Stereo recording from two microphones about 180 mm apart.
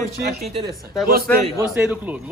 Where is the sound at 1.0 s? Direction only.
55° right (ahead or behind).